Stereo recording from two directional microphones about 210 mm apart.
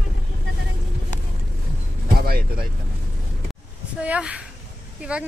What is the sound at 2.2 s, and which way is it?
Vehicle, 45° right (ahead or behind).